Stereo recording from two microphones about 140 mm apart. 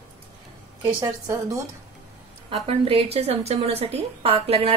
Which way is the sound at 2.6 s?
45° right (ahead or behind).